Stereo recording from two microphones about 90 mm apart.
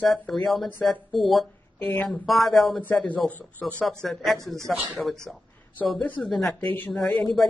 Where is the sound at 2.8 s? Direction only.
15° left (ahead or behind); by 5.4 s centre (ahead or behind).